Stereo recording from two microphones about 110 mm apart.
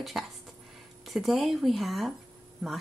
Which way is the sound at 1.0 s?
Centre (ahead or behind).